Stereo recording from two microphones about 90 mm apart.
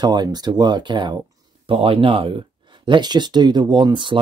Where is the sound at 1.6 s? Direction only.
90° right; by 4.1 s 60° right (ahead or behind).